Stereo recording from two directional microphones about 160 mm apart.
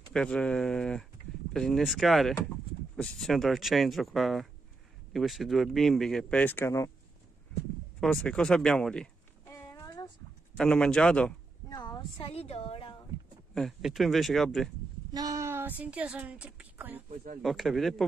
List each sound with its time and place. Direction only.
0.1 s speech: 5° left (ahead or behind)
8.0 s speech: 5° left (ahead or behind)
9.5 s a sound: 20° left (ahead or behind)
10.6 s speech: 5° left (ahead or behind)
11.7 s speech: 25° left (ahead or behind)
13.6 s speech: centre (ahead or behind)
15.1 s speech: 20° right (ahead or behind)
17.1 s speech: 55° right (ahead or behind)
17.4 s speech: centre (ahead or behind)